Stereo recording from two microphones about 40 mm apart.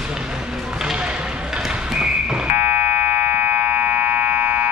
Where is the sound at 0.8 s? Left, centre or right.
Right.